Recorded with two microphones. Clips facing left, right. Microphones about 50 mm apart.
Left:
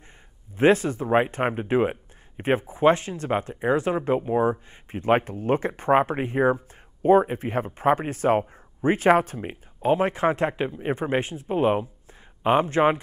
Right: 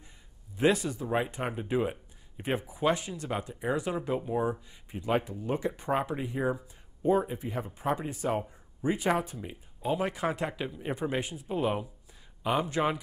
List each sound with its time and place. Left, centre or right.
0.6 s speech: left